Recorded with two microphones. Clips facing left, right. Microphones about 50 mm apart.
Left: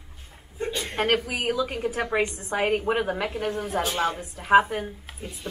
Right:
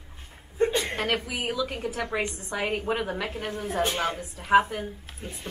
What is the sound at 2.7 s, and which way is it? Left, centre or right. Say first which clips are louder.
Speech: left 4 dB; left.